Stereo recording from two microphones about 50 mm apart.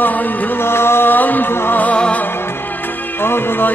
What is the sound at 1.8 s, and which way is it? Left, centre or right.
Music, left.